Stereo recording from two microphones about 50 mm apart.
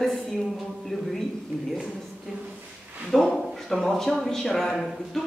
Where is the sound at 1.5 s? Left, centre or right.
Right.